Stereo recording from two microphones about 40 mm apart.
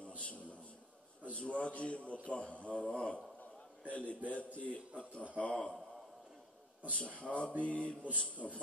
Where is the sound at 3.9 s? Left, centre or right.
Left.